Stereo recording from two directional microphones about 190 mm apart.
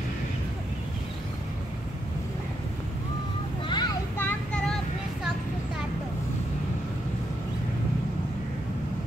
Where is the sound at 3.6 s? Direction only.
25° left (ahead or behind).